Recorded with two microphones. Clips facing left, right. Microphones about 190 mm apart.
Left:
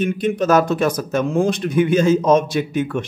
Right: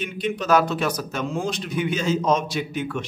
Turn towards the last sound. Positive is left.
turn(degrees=50)  # may be behind; listen again after turning